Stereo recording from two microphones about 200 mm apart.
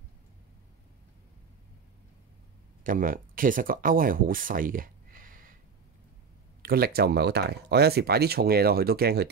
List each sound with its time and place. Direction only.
2.8 s speech: 45° right (ahead or behind)
6.6 s speech: 50° right (ahead or behind)